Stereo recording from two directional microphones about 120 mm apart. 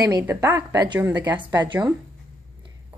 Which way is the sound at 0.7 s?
30° right (ahead or behind).